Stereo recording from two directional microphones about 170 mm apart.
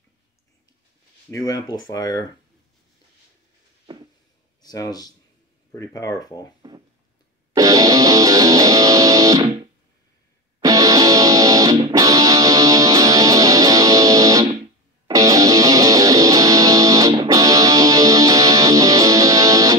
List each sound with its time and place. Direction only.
1.3 s speech: 20° left (ahead or behind)
4.6 s speech: 25° left (ahead or behind)
6.6 s a sound: 25° right (ahead or behind)
7.5 s music: 20° right (ahead or behind)
10.6 s music: 20° right (ahead or behind)